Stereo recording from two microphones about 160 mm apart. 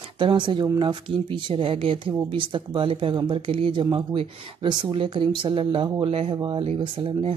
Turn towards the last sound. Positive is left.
turn(degrees=-35)  # may be behind; listen again after turning